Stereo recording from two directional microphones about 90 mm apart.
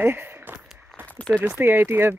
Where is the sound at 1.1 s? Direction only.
15° left (ahead or behind).